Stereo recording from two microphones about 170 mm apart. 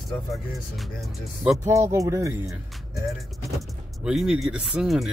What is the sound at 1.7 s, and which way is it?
Speech, 15° right (ahead or behind).